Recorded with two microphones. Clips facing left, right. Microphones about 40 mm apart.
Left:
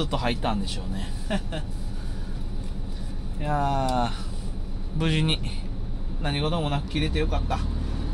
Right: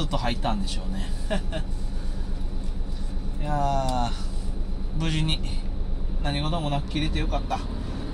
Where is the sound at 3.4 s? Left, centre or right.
Left.